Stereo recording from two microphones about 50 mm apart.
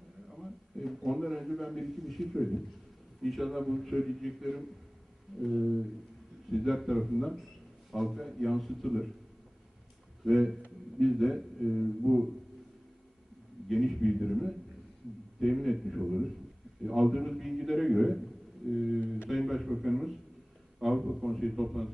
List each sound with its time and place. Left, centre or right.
0.3 s a sound: centre
3.2 s a man's voice: centre
10.2 s a man's voice: centre
13.7 s a man's voice: centre